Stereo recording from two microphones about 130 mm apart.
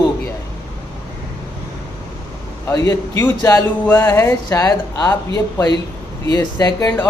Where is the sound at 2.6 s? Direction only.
25° left (ahead or behind).